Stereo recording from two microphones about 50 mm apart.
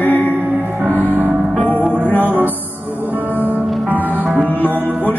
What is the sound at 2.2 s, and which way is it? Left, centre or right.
Music, right.